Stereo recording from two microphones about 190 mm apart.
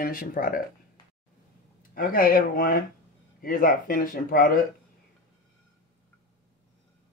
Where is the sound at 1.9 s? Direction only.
50° left (ahead or behind).